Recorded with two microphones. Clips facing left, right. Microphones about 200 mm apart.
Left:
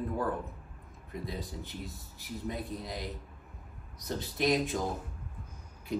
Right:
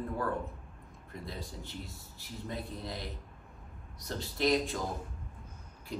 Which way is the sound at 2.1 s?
20° left (ahead or behind).